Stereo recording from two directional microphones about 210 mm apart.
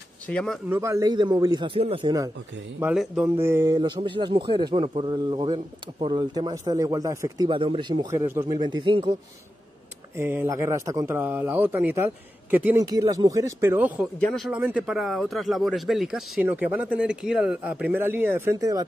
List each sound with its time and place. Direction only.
0.3 s speech: 5° left (ahead or behind)
0.7 s a man's voice: 15° right (ahead or behind)
2.8 s a man's voice: 5° right (ahead or behind); by 9.1 s 25° right (ahead or behind)
10.1 s speech: 10° right (ahead or behind)